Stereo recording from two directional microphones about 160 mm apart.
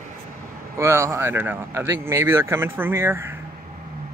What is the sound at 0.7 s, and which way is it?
Speech, 15° right (ahead or behind).